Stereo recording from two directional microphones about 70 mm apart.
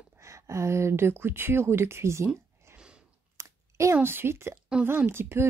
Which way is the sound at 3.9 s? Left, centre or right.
Right.